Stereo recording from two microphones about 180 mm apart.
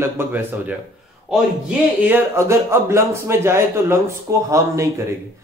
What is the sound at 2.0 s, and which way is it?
Speech, 10° right (ahead or behind).